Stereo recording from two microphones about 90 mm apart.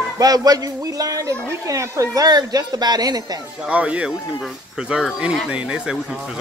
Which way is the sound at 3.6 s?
15° right (ahead or behind).